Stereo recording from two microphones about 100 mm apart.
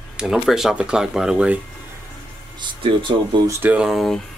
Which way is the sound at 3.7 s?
5° right (ahead or behind).